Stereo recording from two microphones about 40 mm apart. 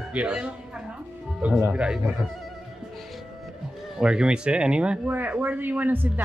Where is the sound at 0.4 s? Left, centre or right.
Right.